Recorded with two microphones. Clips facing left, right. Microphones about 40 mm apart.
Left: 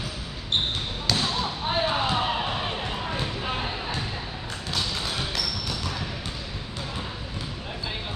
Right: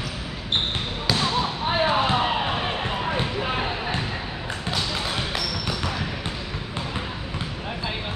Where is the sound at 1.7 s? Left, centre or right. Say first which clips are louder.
Right 4 dB; centre.